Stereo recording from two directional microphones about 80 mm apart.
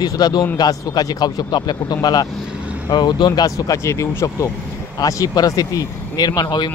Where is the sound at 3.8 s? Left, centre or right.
Left.